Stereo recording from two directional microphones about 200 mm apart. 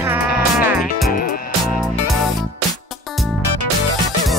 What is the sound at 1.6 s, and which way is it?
Music, centre (ahead or behind).